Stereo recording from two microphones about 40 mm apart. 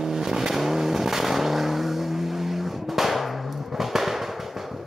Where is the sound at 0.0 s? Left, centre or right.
Centre.